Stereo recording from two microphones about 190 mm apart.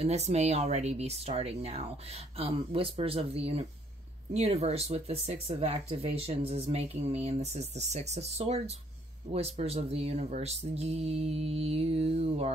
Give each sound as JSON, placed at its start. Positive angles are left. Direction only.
{"t": 0.0, "sound": "speech", "side_deg": -35}